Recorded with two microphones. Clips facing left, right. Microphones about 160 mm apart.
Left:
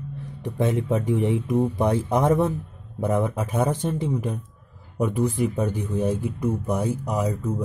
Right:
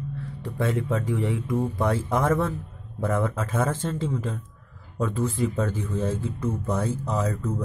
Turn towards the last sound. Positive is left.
turn(degrees=15)  # may be behind; listen again after turning